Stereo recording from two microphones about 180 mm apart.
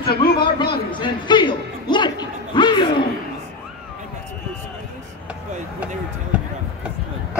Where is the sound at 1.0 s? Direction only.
25° left (ahead or behind).